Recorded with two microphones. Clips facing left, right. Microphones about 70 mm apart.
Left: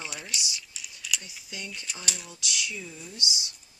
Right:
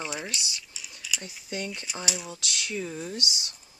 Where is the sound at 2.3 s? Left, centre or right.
Right.